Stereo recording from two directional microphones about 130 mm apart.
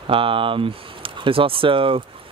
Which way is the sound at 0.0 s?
45° right (ahead or behind).